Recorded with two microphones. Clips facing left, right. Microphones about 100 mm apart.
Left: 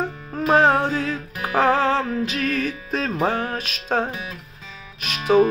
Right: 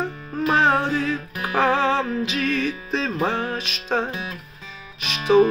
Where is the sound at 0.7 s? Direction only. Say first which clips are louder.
Even; 10° left (ahead or behind).